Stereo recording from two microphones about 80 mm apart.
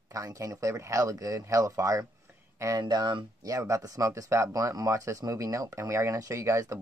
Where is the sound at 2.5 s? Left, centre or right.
Right.